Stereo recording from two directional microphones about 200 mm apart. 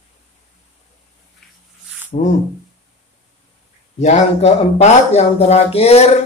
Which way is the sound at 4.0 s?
35° left (ahead or behind).